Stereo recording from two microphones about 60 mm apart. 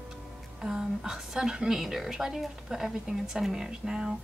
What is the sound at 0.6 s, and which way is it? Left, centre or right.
A woman's voice, centre.